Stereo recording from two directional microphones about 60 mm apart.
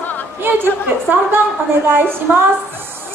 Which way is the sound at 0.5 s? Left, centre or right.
Right.